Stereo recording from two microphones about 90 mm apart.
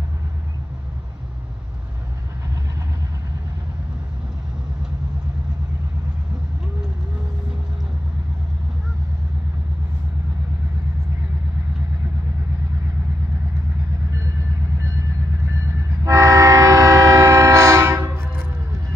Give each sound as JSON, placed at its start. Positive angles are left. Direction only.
{"t": 16.0, "sound": "train", "side_deg": -35}